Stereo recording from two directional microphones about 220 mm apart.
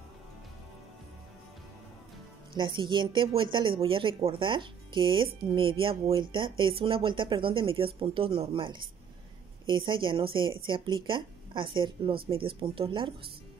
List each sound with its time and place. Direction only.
2.5 s a woman's voice: 20° right (ahead or behind)